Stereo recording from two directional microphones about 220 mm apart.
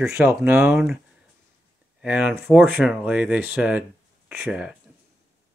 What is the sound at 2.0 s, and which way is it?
Speech, 5° right (ahead or behind).